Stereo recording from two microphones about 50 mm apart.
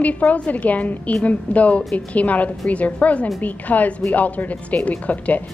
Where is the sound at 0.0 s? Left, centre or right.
Left.